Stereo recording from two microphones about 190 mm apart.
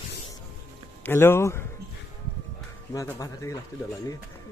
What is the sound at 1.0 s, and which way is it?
Speech, 10° left (ahead or behind).